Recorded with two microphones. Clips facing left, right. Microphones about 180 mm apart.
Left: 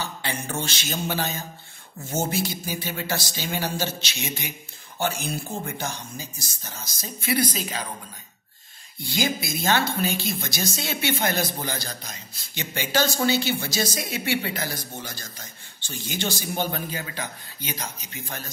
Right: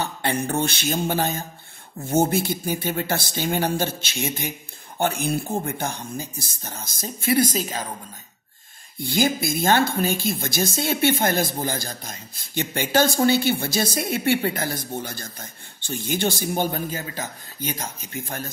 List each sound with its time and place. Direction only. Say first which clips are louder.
0.0 s a sound: right 6 dB; 60° right (ahead or behind)
0.6 s speech: right 6 dB; 55° right (ahead or behind)
9.0 s speech: right 5 dB; 55° right (ahead or behind)